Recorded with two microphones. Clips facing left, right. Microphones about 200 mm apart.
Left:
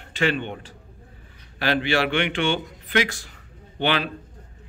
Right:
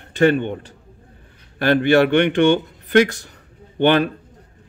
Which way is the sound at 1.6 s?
50° right (ahead or behind).